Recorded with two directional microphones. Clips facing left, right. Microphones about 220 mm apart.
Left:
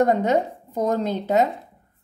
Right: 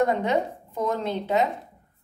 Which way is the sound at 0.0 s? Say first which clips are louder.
Left 4 dB; 45° left (ahead or behind).